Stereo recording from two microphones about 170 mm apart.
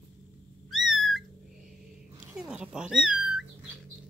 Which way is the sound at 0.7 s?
Centre (ahead or behind).